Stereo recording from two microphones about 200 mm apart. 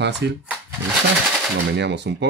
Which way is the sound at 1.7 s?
60° right (ahead or behind).